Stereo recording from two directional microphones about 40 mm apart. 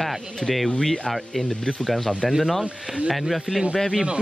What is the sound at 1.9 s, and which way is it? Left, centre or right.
Speech, centre.